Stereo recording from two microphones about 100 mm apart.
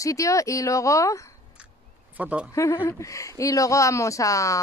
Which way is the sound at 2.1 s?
15° right (ahead or behind).